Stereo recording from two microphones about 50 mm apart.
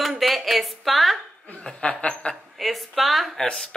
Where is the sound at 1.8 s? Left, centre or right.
Left.